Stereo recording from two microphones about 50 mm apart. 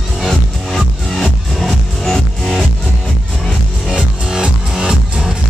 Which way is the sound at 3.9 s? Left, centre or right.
Centre.